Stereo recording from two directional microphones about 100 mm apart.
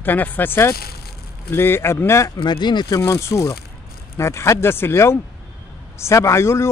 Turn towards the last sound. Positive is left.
turn(degrees=25)  # may be behind; listen again after turning